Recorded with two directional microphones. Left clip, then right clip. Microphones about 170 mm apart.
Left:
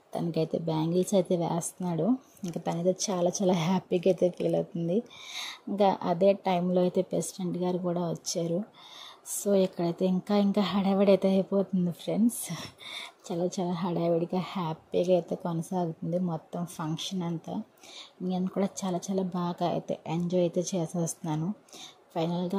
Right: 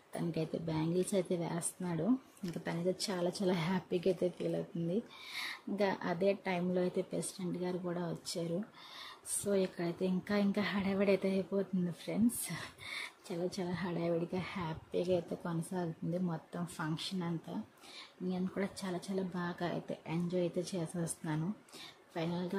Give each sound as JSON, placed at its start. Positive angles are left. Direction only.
{"t": 0.1, "sound": "a woman's voice", "side_deg": 25}